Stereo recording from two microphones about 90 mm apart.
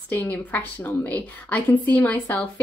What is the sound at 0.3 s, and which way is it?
A woman's voice, 20° left (ahead or behind).